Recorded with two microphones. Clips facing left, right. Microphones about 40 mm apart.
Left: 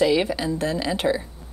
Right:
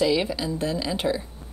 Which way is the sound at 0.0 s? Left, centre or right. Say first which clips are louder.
Left 3 dB; left.